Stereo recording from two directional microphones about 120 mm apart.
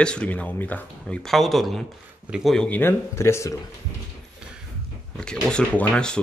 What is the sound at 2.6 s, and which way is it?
Speech, 15° left (ahead or behind).